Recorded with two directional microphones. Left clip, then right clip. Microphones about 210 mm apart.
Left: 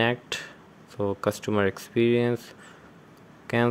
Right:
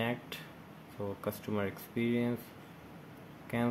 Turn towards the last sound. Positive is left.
turn(degrees=50)  # may be behind; listen again after turning